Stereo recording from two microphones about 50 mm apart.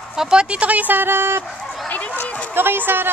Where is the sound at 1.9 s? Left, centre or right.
Left.